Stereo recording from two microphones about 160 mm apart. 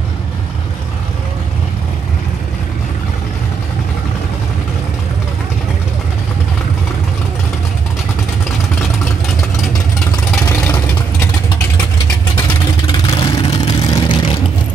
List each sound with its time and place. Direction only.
10.4 s vehicle: 15° left (ahead or behind)
12.8 s vehicle: 35° left (ahead or behind)